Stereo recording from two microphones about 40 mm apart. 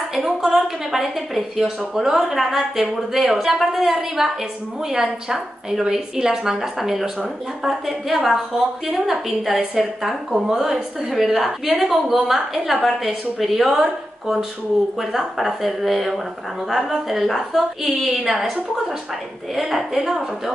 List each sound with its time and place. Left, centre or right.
0.5 s a woman's voice: centre
4.9 s a woman's voice: centre
19.7 s speech: centre